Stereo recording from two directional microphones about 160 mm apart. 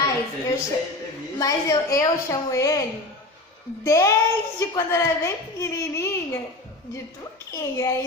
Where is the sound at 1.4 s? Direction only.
20° left (ahead or behind).